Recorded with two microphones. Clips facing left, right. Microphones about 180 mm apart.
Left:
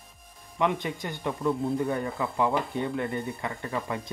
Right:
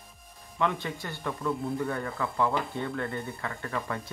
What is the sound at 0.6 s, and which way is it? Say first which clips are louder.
Speech: left 2 dB; 20° left (ahead or behind).